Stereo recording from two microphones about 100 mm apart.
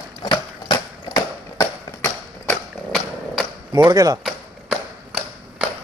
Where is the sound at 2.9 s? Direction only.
5° left (ahead or behind).